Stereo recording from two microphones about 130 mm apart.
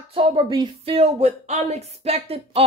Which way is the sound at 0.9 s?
55° right (ahead or behind).